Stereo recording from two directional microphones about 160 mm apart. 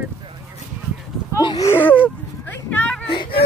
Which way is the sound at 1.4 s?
30° left (ahead or behind).